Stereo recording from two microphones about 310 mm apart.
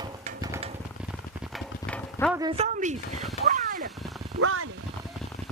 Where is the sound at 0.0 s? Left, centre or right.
Centre.